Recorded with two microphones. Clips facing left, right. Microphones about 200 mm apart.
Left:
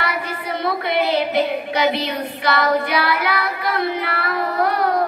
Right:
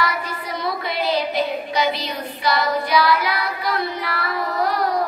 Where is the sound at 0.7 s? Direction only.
60° left (ahead or behind).